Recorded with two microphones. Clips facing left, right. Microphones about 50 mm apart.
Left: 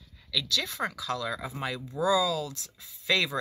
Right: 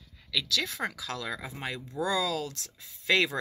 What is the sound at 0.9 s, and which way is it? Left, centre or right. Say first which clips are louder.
Speech: left 4 dB; right.